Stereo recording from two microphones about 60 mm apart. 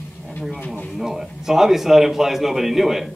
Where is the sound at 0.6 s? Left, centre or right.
Left.